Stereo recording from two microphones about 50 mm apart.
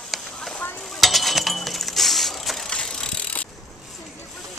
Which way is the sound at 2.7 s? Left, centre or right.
Centre.